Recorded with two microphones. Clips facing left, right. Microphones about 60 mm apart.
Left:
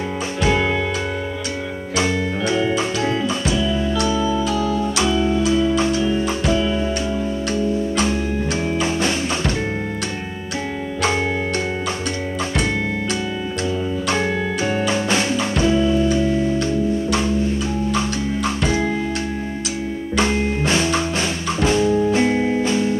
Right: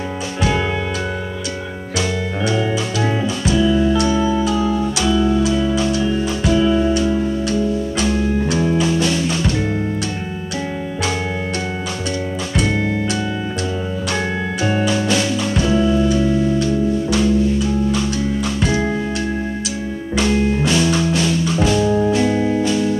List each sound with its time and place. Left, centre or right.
4.1 s music: right
4.9 s music: left
6.5 s music: centre
8.0 s music: left
14.9 s music: left
15.8 s music: right
17.1 s music: left
20.2 s music: left
21.8 s organ: right
22.1 s music: left